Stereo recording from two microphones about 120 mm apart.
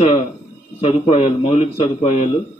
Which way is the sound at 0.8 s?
55° left (ahead or behind).